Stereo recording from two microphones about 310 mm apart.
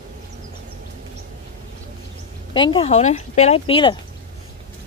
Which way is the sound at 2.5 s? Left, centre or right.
Centre.